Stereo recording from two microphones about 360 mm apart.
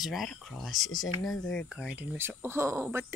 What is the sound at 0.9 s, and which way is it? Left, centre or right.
Speech, left.